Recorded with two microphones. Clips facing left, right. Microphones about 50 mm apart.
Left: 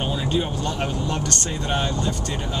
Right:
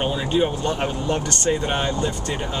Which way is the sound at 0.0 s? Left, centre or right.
Centre.